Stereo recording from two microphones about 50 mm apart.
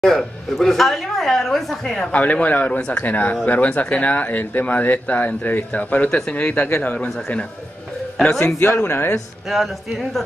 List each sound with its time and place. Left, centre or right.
0.0 s speech: centre
2.1 s speech: left
6.0 s speech: centre
6.3 s speech: left
8.2 s speech: left
8.5 s speech: left
9.5 s speech: centre